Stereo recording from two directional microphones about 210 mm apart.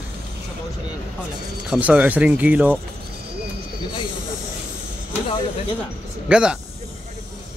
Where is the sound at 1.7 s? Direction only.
5° right (ahead or behind).